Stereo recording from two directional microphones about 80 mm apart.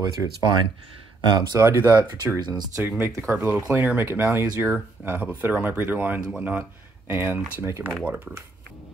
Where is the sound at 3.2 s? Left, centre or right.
Right.